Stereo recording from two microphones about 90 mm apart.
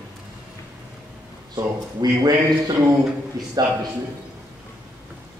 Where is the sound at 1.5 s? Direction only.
45° right (ahead or behind).